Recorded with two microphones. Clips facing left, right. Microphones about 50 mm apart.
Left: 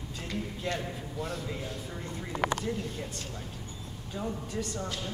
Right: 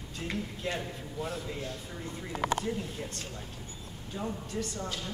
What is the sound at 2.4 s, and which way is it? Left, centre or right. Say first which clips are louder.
Speech: left 1 dB; left.